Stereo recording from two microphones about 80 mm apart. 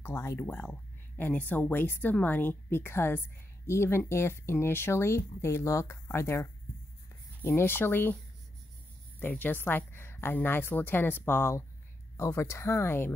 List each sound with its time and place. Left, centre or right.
0.0 s speech: left
0.5 s speech: left
9.2 s speech: left